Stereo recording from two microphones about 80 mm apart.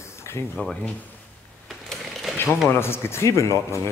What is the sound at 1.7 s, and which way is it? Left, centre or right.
Sewing machine, centre.